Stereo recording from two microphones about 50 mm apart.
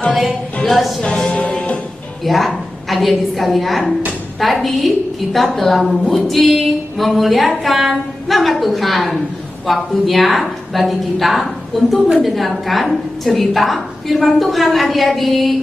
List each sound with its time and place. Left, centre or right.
0.7 s a woman's voice: centre
1.0 s music: left
2.2 s a woman's voice: centre